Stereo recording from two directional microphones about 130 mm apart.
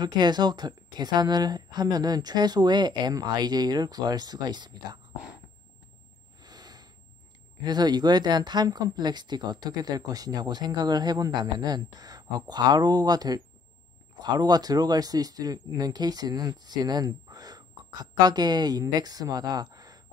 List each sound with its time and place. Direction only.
0.0 s speech: 35° right (ahead or behind)
6.4 s a sound: 30° right (ahead or behind)
7.6 s speech: 35° right (ahead or behind)